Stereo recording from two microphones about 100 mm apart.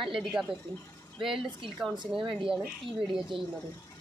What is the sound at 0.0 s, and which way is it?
Speech, centre (ahead or behind).